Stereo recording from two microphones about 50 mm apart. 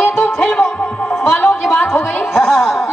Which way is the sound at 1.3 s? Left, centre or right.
Left.